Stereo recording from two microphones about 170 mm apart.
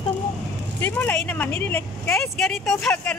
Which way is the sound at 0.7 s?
10° left (ahead or behind).